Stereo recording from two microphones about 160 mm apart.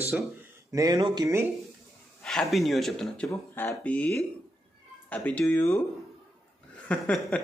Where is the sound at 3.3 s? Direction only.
10° left (ahead or behind).